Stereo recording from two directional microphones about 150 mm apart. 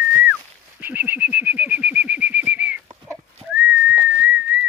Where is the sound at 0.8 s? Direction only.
15° right (ahead or behind).